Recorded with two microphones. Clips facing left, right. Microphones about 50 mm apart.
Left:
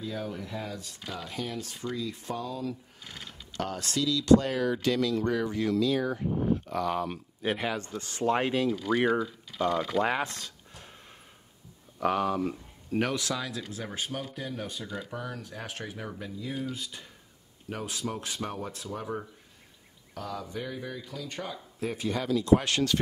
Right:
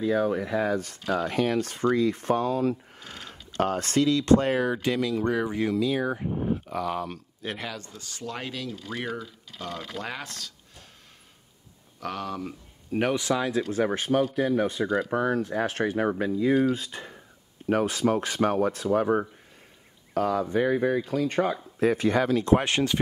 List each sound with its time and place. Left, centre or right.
0.0 s speech: right; by 6.2 s centre
6.7 s speech: centre
7.4 s speech: centre
7.7 s speech: left
12.0 s speech: centre
13.0 s speech: right
13.7 s speech: right
14.9 s speech: right
15.1 s speech: right
22.6 s speech: right